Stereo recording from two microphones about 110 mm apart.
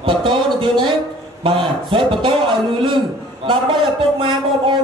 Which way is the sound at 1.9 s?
50° right (ahead or behind).